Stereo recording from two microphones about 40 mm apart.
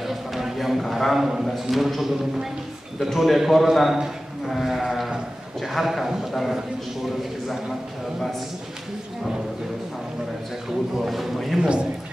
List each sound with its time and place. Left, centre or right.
0.0 s a man's voice: centre
11.1 s a sound: centre
11.6 s speech: right